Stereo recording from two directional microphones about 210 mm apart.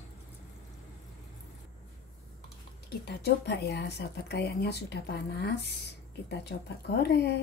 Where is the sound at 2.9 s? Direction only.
50° left (ahead or behind).